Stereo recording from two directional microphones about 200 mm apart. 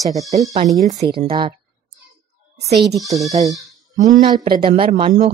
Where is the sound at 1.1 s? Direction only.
25° right (ahead or behind).